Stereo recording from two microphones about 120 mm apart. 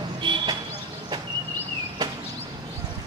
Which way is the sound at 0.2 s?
40° right (ahead or behind).